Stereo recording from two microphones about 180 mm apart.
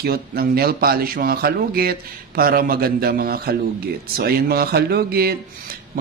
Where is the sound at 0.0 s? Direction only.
55° right (ahead or behind).